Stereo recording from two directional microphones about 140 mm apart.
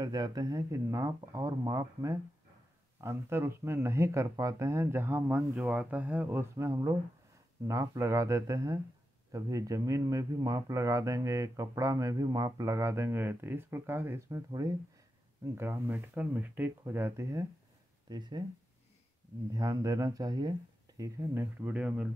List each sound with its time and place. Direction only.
0.0 s speech: 30° right (ahead or behind)
19.5 s speech: 25° right (ahead or behind); by 22.1 s 10° right (ahead or behind)